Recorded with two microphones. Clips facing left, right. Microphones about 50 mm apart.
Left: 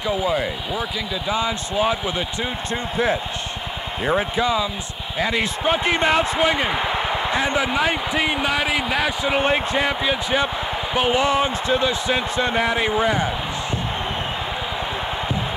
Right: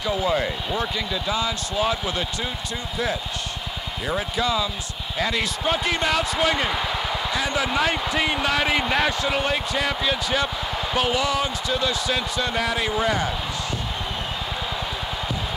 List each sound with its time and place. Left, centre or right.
0.0 s speech: centre
1.3 s speech: left; by 9.1 s centre
9.4 s speech: left